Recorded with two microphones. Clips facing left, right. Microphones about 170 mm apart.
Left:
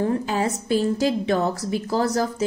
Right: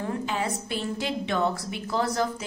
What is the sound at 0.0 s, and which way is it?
A woman's voice, 40° left (ahead or behind).